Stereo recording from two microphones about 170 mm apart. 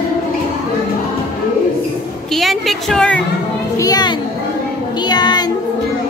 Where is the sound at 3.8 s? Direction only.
25° left (ahead or behind).